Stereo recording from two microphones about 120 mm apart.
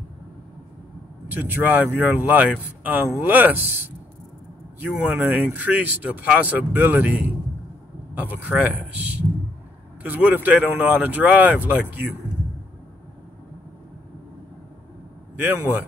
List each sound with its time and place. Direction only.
1.3 s speech: 15° right (ahead or behind)
15.3 s speech: 10° right (ahead or behind)